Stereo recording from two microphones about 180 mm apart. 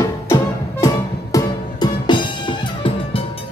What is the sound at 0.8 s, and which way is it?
Music, 20° left (ahead or behind).